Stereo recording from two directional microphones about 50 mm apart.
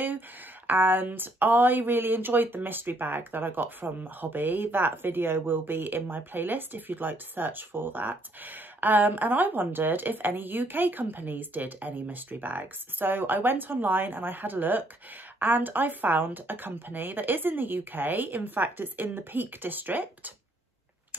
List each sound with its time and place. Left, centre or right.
0.7 s speech: right